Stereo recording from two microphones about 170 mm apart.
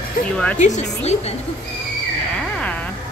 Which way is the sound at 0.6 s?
45° left (ahead or behind).